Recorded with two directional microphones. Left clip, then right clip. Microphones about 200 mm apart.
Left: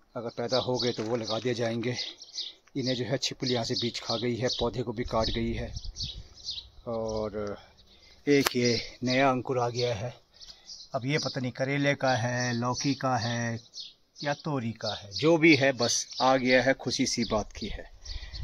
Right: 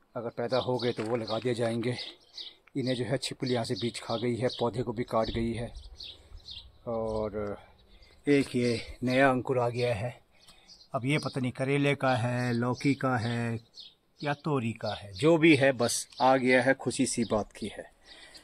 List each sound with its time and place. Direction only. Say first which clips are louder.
0.1 s speech: left 1 dB; 10° left (ahead or behind)
5.8 s speech: left 7 dB; 55° left (ahead or behind)
6.8 s speech: right 1 dB; 5° left (ahead or behind)
9.0 s speech: right 1 dB; 5° right (ahead or behind)